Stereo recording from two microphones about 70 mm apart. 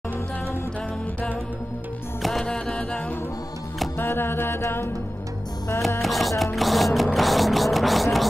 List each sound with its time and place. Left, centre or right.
2.2 s music: centre
4.0 s music: left
5.9 s music: centre